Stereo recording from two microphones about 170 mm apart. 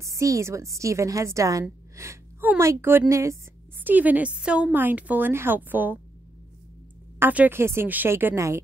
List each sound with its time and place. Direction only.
0.0 s a woman's voice: 15° right (ahead or behind)
7.2 s a woman's voice: 10° right (ahead or behind)